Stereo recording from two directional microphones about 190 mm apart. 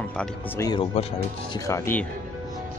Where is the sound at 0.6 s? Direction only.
25° left (ahead or behind).